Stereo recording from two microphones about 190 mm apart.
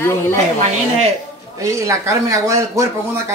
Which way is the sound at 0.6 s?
35° right (ahead or behind).